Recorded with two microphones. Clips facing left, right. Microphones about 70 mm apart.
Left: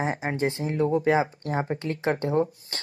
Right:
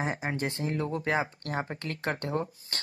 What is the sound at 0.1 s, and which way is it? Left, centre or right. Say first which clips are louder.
Speech: left 5 dB; centre.